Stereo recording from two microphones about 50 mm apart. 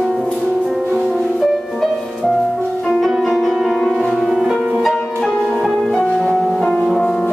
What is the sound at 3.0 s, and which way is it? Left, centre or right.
Music, centre.